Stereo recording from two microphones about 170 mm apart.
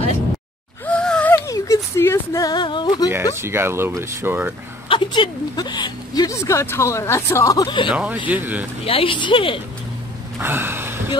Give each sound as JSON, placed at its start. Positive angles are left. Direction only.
{"t": 0.8, "sound": "a sound", "side_deg": 5}
{"t": 3.3, "sound": "speech", "side_deg": -15}
{"t": 4.8, "sound": "speech", "side_deg": 30}
{"t": 7.9, "sound": "speech", "side_deg": -5}
{"t": 8.8, "sound": "a woman's voice", "side_deg": 30}
{"t": 10.4, "sound": "a sound", "side_deg": -10}